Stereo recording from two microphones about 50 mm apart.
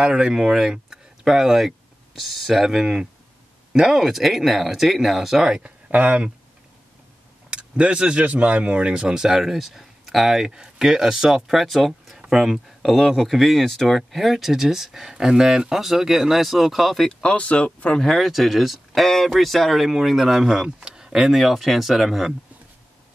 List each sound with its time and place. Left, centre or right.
0.0 s speech: centre
2.8 s speech: centre
5.6 s speech: right
7.5 s speech: right; by 17.2 s centre
17.2 s speech: left
18.1 s speech: centre